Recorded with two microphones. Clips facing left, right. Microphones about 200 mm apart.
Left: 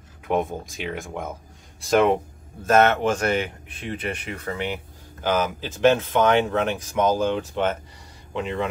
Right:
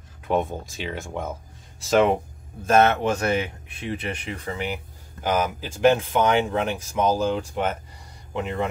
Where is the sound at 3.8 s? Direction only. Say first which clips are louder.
Even; 25° right (ahead or behind).